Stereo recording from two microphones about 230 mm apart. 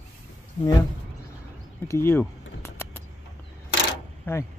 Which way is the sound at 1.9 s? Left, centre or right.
Centre.